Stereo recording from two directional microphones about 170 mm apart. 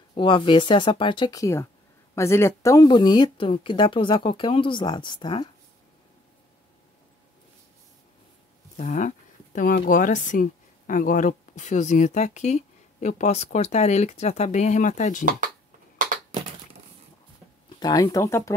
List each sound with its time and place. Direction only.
0.1 s speech: 30° left (ahead or behind)
8.7 s a sound: 45° left (ahead or behind)
9.8 s speech: 50° left (ahead or behind)
17.7 s speech: 25° left (ahead or behind)